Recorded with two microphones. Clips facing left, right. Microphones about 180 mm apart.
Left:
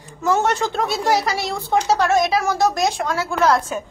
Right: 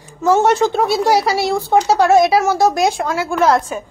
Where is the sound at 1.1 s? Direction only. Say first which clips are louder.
Right 5 dB; 30° right (ahead or behind).